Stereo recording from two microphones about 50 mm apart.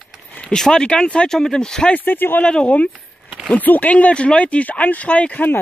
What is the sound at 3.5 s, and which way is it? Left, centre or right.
Speech, left.